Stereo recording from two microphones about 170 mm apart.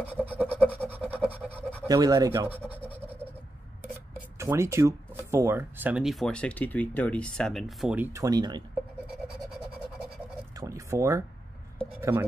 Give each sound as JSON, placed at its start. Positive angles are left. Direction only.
{"t": 0.2, "sound": "speech", "side_deg": -10}
{"t": 1.1, "sound": "a sound", "side_deg": -10}
{"t": 1.9, "sound": "speech", "side_deg": -20}
{"t": 2.9, "sound": "scratch", "side_deg": -10}
{"t": 4.4, "sound": "speech", "side_deg": -15}
{"t": 9.5, "sound": "scratch", "side_deg": 0}
{"t": 10.5, "sound": "a sound", "side_deg": -20}
{"t": 12.0, "sound": "speech", "side_deg": -15}